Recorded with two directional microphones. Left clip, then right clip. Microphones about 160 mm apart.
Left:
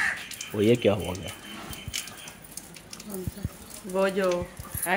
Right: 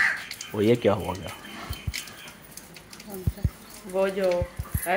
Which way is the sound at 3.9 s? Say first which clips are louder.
Right 1 dB; 90° left.